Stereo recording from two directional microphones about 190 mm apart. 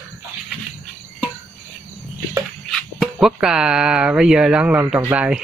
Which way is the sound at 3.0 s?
Centre (ahead or behind).